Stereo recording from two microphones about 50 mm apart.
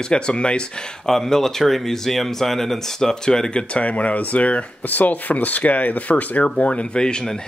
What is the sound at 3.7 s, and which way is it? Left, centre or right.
Speech, left.